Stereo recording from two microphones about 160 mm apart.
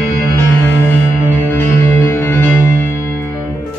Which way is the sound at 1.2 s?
15° left (ahead or behind).